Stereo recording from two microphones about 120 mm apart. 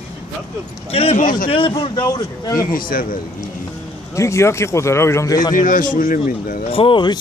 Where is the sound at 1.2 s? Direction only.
90° left.